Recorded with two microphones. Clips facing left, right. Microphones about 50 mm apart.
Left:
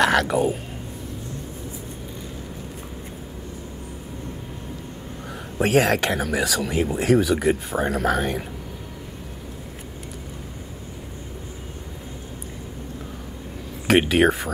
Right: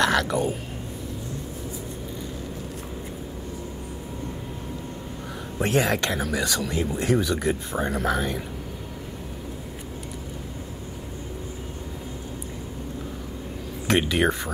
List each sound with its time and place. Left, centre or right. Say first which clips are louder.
0.1 s speech: left 3 dB; left
5.6 s speech: left 4 dB; left
6.0 s speech: left 3 dB; left
7.0 s speech: left 5 dB; left
13.8 s speech: left 5 dB; left